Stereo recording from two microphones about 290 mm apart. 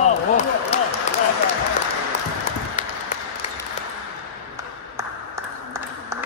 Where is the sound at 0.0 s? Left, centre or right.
Left.